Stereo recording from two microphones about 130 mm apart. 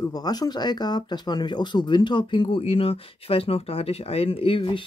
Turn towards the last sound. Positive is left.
turn(degrees=40)  # may be behind; listen again after turning